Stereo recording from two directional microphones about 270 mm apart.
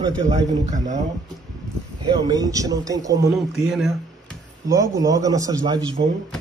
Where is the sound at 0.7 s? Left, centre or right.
Right.